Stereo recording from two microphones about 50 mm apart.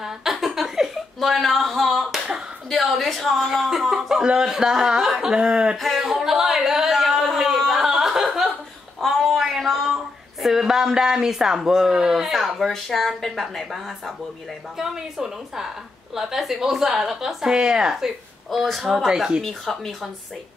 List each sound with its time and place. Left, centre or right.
0.0 s a sound: centre
2.7 s a woman's voice: centre
5.8 s speech: centre
6.0 s a sound: centre
10.4 s speech: centre
14.8 s speech: centre
17.9 s speech: centre
19.4 s a woman's voice: centre